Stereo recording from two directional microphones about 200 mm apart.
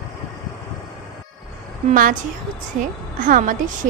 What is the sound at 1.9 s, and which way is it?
A woman's voice, 45° right (ahead or behind).